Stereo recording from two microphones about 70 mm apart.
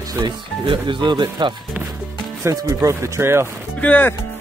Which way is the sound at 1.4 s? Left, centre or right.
Right.